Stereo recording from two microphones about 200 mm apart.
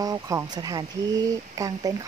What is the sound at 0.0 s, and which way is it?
Speech, 15° right (ahead or behind).